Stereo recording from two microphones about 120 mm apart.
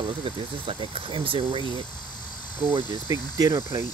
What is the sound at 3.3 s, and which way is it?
Speech, 30° right (ahead or behind).